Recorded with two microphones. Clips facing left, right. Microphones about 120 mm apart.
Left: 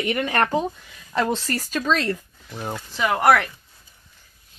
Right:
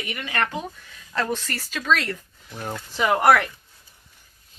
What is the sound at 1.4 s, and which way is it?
Speech, 45° left (ahead or behind).